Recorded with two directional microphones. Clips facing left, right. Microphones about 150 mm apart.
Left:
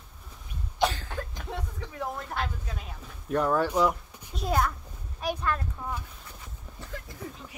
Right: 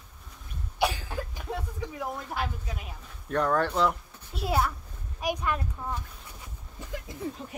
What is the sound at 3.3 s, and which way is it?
Speech, 10° left (ahead or behind).